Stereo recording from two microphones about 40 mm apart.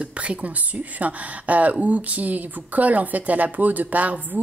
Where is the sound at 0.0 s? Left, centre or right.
Right.